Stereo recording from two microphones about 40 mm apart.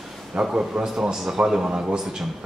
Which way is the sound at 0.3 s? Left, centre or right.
Right.